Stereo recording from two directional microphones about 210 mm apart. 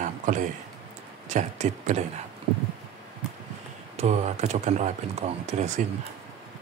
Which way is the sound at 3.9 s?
30° right (ahead or behind).